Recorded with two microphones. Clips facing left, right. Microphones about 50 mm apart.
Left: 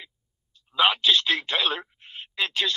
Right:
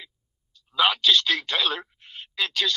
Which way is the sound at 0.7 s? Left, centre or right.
Left.